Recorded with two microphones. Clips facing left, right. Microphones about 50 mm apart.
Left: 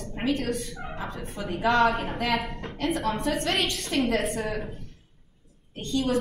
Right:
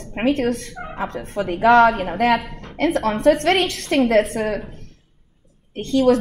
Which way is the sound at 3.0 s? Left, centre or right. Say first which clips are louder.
Right 14 dB; right.